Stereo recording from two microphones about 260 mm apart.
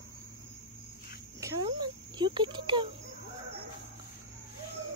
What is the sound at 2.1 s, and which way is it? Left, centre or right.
Insect, centre.